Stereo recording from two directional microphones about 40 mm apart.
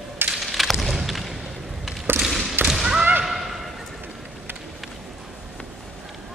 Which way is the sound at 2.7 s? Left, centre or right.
Centre.